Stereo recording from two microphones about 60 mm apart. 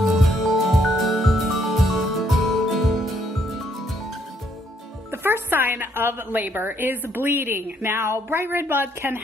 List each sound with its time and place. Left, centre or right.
0.0 s music: centre
5.1 s a woman's voice: right